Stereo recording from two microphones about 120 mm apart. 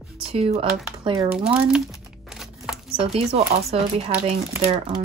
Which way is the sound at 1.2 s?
5° right (ahead or behind).